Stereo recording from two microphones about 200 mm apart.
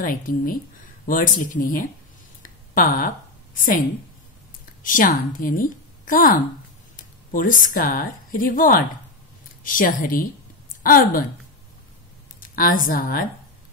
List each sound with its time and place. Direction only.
0.0 s speech: 45° left (ahead or behind)
2.4 s a sound: 45° left (ahead or behind)
3.5 s speech: 45° left (ahead or behind)
4.8 s a woman's voice: 45° left (ahead or behind)
12.4 s a woman's voice: 45° left (ahead or behind)